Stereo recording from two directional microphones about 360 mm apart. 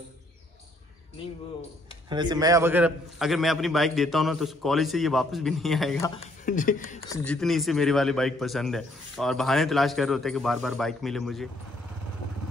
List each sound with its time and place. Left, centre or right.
2.0 s speech: centre
6.4 s speech: left
7.1 s speech: centre